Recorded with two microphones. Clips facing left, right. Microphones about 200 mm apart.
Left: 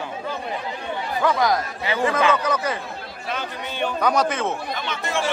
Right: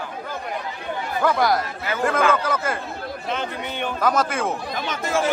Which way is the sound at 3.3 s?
20° right (ahead or behind).